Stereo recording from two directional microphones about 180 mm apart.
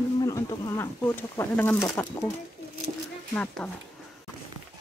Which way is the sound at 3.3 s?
5° left (ahead or behind).